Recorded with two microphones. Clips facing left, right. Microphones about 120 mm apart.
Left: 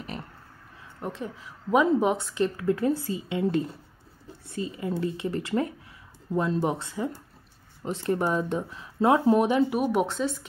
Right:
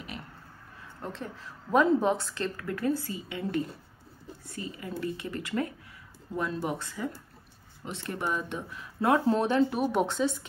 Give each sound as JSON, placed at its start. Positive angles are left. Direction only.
{"t": 1.0, "sound": "a woman's voice", "side_deg": 10}
{"t": 7.8, "sound": "speech", "side_deg": 40}